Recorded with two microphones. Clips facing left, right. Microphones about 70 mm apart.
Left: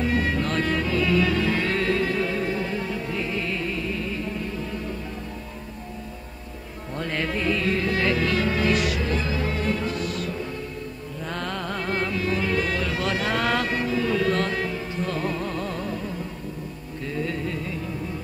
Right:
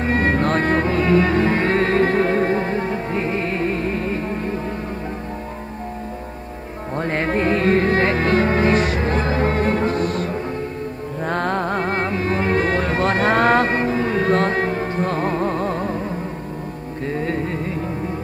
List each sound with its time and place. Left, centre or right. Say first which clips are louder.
0.0 s music: right 5 dB; right
7.0 s music: right 7 dB; right